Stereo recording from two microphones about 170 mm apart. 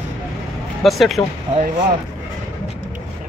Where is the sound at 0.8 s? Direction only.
Centre (ahead or behind).